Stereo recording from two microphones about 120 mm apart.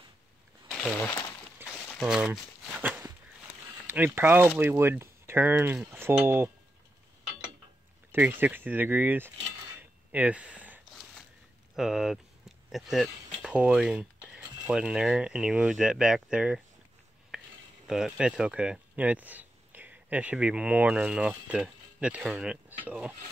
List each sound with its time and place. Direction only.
0.7 s a sound: 10° left (ahead or behind)
2.0 s walk: 5° right (ahead or behind)
3.8 s speech: 15° right (ahead or behind)
8.1 s speech: 15° right (ahead or behind)
11.7 s a sound: 5° right (ahead or behind)
14.7 s speech: 5° right (ahead or behind)
17.3 s stir: 5° right (ahead or behind)
17.8 s speech: 5° right (ahead or behind)